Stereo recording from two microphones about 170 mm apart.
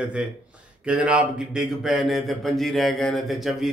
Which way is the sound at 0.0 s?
5° right (ahead or behind).